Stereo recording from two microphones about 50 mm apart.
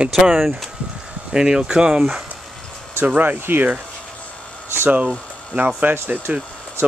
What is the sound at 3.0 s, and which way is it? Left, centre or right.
Speech, right.